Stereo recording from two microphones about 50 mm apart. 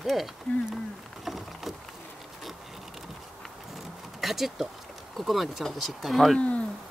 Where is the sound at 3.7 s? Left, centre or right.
Centre.